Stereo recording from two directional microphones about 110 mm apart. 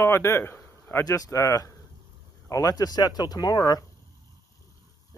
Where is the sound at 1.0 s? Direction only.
35° left (ahead or behind).